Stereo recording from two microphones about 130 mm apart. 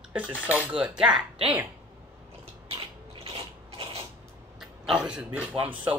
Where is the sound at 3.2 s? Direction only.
45° right (ahead or behind).